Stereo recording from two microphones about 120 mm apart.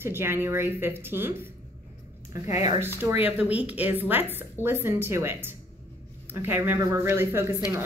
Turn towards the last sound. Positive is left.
turn(degrees=-20)  # may be behind; listen again after turning